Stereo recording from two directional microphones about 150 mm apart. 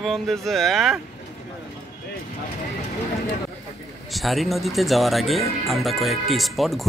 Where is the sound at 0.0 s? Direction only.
Centre (ahead or behind).